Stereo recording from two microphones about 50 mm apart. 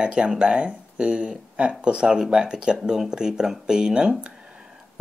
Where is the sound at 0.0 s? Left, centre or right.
Centre.